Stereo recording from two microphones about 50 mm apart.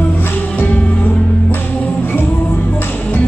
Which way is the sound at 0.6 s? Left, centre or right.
Left.